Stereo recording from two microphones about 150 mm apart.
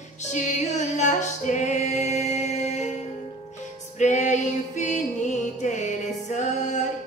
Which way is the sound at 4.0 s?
55° left (ahead or behind).